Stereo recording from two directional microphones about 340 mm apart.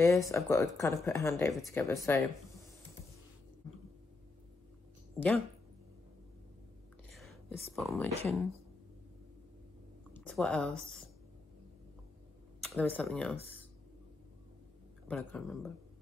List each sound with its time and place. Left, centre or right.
0.0 s speech: centre
7.2 s whispering: centre
8.3 s speech: centre
10.1 s speech: centre
12.6 s speech: centre
15.0 s speech: centre